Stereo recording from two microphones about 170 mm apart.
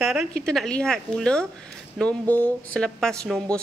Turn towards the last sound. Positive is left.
turn(degrees=5)  # may be behind; listen again after turning